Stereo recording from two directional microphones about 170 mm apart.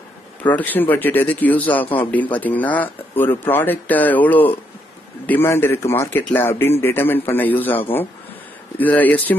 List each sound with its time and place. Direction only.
0.4 s speech: 10° left (ahead or behind)